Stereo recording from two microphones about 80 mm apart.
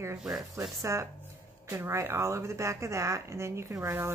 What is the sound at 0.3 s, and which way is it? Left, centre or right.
A woman's voice, right.